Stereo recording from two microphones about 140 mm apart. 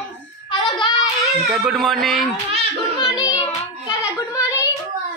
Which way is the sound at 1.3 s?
5° right (ahead or behind).